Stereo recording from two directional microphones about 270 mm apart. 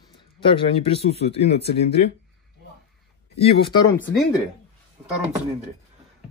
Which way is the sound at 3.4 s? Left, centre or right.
Centre.